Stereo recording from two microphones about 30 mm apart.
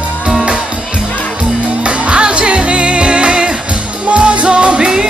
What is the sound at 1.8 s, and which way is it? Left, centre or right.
Music, right.